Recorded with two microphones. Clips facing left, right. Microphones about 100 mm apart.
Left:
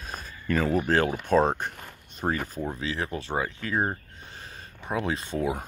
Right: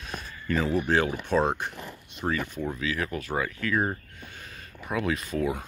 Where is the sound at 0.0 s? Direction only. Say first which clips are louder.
Even; 45° left (ahead or behind).